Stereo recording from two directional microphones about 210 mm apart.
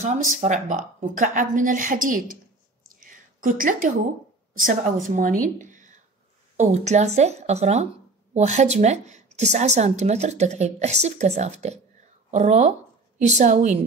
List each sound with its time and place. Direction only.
0.0 s speech: 35° right (ahead or behind)
2.9 s a sound: 40° right (ahead or behind)
4.6 s speech: 40° right (ahead or behind)